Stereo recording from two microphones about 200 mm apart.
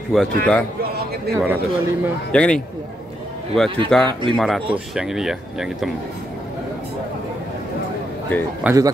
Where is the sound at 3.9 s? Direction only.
5° left (ahead or behind).